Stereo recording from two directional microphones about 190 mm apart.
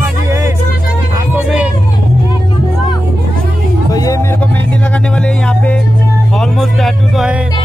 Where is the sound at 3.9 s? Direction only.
20° left (ahead or behind).